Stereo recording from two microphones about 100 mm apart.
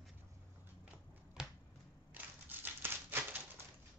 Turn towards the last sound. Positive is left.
turn(degrees=-20)  # may be behind; listen again after turning